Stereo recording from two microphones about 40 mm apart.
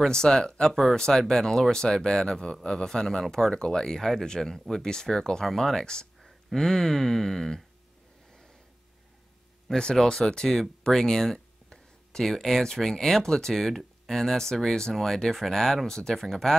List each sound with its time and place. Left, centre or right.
0.0 s a man's voice: centre
9.8 s a man's voice: centre